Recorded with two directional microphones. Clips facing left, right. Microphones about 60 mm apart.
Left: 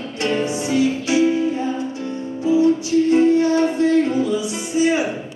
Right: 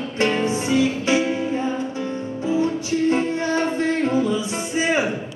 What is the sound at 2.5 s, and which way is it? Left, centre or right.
Music, right.